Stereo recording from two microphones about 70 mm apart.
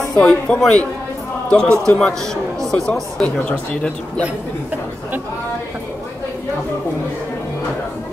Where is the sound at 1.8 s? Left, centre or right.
Centre.